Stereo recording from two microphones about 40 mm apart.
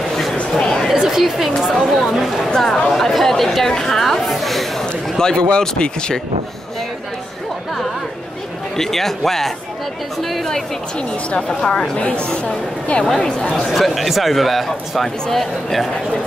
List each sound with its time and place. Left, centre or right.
1.0 s a woman's voice: centre
2.5 s speech: centre
4.3 s a sound: centre
5.2 s speech: centre
8.7 s speech: centre
11.6 s speech: left
13.7 s speech: centre